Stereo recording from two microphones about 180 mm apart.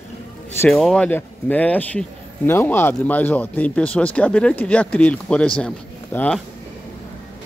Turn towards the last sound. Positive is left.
turn(degrees=10)  # may be behind; listen again after turning